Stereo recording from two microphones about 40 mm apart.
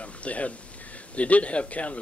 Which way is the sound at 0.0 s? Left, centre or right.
Left.